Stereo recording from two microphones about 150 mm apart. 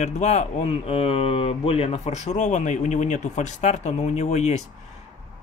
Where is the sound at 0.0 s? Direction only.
50° left (ahead or behind).